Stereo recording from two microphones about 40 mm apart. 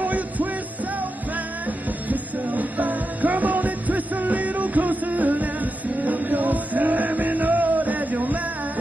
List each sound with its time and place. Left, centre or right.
0.0 s music: right
2.0 s music: right